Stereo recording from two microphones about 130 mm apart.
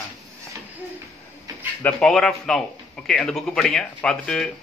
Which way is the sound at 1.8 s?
10° left (ahead or behind).